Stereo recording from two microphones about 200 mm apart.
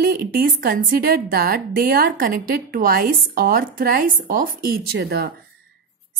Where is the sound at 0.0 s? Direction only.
45° right (ahead or behind).